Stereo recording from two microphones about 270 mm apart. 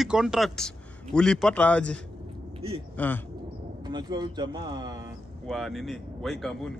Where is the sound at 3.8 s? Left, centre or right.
Centre.